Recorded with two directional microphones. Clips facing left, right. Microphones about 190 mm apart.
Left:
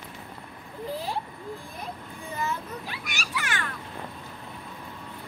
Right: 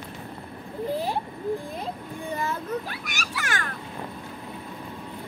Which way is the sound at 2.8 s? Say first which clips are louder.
Right 2 dB; 45° right (ahead or behind).